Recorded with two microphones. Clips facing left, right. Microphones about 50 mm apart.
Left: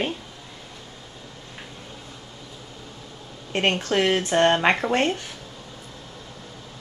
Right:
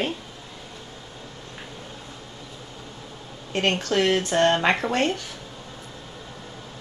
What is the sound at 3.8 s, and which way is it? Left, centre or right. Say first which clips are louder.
Speech: even; left.